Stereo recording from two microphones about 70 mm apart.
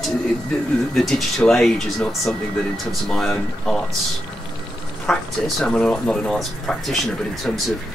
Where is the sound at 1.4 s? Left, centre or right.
Centre.